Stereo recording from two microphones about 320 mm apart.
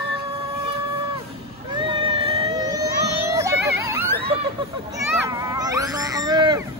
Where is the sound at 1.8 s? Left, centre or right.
Centre.